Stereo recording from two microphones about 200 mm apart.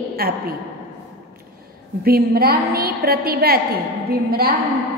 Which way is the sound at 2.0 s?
50° right (ahead or behind).